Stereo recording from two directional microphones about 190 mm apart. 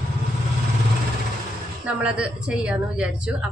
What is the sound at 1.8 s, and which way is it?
A man's voice, 5° right (ahead or behind).